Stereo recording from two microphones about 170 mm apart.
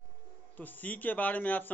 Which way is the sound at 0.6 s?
10° left (ahead or behind).